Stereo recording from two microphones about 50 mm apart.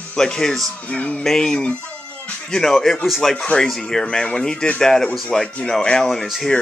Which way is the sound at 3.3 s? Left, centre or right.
Centre.